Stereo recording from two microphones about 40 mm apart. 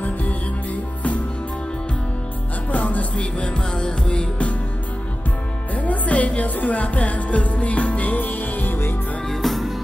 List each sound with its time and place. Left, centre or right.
2.7 s music: left
3.2 s music: left
5.8 s music: left
9.3 s music: centre